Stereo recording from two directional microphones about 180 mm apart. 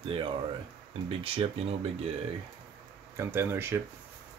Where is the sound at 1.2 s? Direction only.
30° right (ahead or behind).